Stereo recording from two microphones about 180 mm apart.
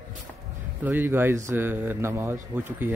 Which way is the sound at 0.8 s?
10° right (ahead or behind).